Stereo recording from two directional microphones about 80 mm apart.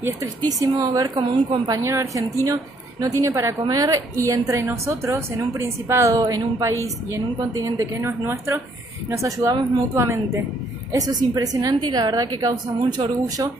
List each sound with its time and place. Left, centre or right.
0.5 s a woman's voice: right
1.1 s a woman's voice: right
1.7 s a woman's voice: right
3.6 s a woman's voice: right
6.1 s a woman's voice: right
9.1 s a woman's voice: right
10.9 s a woman's voice: right